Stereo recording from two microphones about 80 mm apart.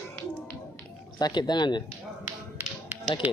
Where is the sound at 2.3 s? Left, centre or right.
Right.